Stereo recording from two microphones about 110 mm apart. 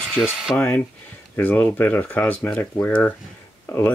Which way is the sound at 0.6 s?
15° left (ahead or behind).